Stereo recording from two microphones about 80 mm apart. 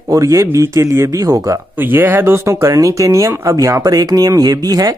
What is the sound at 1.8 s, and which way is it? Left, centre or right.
Speech, right.